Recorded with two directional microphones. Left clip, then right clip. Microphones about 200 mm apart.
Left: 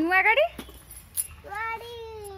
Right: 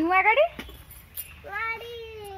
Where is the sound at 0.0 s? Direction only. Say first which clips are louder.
Right 1 dB; 20° right (ahead or behind).